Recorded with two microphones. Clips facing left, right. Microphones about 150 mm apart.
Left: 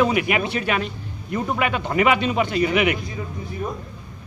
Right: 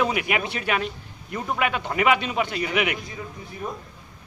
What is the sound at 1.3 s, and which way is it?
Speech, 5° left (ahead or behind).